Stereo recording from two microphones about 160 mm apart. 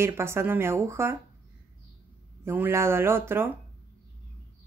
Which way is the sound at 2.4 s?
15° right (ahead or behind).